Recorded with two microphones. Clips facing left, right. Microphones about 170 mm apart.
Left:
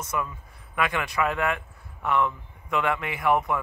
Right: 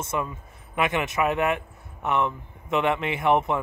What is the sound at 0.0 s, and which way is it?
Speech, 25° right (ahead or behind).